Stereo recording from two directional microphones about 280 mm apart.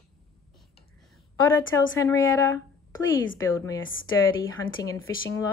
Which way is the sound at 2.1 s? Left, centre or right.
Left.